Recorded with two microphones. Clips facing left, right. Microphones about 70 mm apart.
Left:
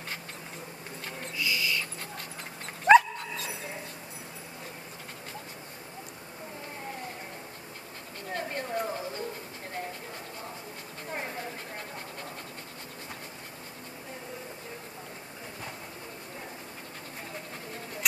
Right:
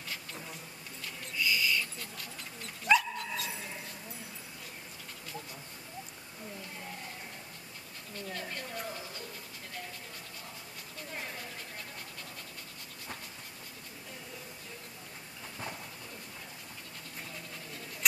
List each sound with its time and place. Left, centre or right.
1.4 s owl: centre
2.0 s dog: left
8.2 s dog: left
11.1 s a sound: left